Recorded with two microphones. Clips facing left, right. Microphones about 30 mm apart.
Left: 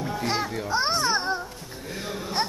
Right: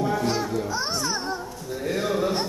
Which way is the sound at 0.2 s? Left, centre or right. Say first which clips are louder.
Right 2 dB; left.